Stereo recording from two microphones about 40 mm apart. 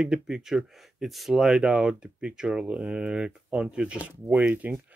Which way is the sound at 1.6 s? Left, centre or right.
Right.